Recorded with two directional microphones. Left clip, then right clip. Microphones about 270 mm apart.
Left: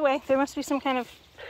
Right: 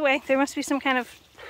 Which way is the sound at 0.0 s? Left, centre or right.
Centre.